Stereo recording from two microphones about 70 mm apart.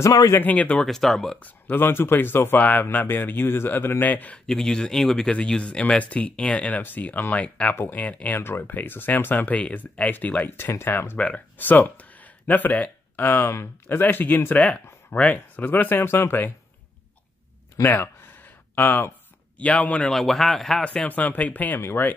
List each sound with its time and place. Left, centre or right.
0.4 s speech: left
0.8 s a man's voice: centre
1.4 s speech: left
4.5 s speech: centre
7.7 s speech: left
11.1 s speech: centre; by 16.3 s left
17.8 s a sound: left
19.6 s speech: centre
20.1 s a man's voice: centre
20.8 s speech: centre